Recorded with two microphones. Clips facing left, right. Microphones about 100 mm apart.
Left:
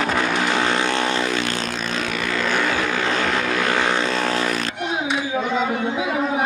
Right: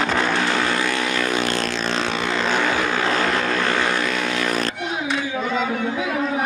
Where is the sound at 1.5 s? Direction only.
60° right (ahead or behind).